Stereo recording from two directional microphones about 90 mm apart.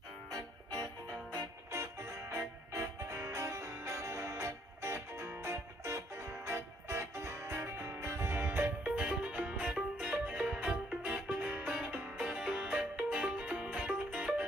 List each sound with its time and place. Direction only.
0.3 s music: 45° right (ahead or behind)
1.7 s music: 30° right (ahead or behind); by 14.3 s 10° right (ahead or behind)